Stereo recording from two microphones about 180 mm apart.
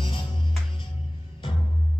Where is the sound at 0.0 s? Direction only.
30° left (ahead or behind).